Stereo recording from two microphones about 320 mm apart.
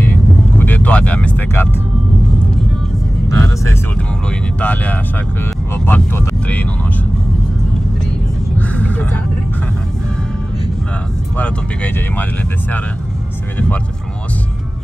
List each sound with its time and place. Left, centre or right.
0.0 s vehicle: centre
3.3 s music: centre
4.6 s speech: centre
8.5 s vehicle: centre
11.3 s speech: centre